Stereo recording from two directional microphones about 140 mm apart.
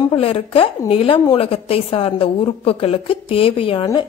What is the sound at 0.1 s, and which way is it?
A woman's voice, 40° left (ahead or behind).